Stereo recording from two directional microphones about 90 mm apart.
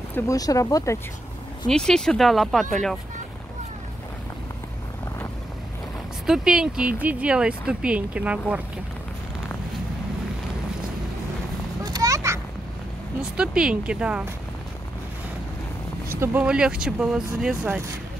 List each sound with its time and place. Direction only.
0.3 s speech: 40° left (ahead or behind)
1.7 s speech: 5° left (ahead or behind)
6.2 s speech: 5° right (ahead or behind)
11.8 s a sound: 40° right (ahead or behind)
13.2 s speech: 10° right (ahead or behind)
16.1 s speech: 25° right (ahead or behind)
16.4 s speech: 10° right (ahead or behind)